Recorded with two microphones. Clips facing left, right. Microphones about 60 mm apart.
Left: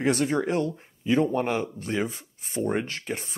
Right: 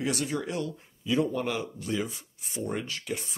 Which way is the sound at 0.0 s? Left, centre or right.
Left.